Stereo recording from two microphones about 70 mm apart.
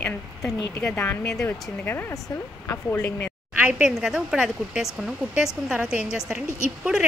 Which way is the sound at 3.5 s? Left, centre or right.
Centre.